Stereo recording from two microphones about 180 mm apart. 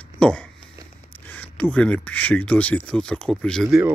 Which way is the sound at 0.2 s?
5° left (ahead or behind).